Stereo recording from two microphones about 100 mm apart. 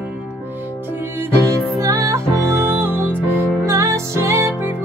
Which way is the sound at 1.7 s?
30° right (ahead or behind).